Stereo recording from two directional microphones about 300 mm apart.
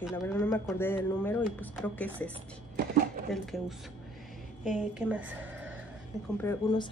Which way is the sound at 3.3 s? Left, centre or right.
Centre.